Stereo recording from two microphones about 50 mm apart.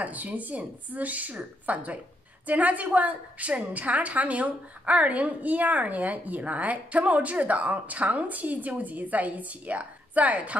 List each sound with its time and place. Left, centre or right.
0.0 s a woman's voice: right